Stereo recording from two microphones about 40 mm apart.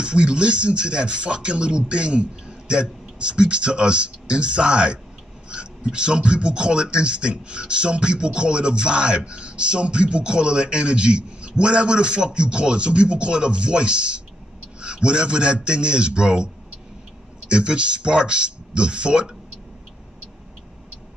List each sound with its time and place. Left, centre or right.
0.0 s speech: right
17.5 s speech: right